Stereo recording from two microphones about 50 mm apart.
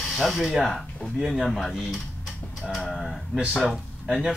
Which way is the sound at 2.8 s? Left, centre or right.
Centre.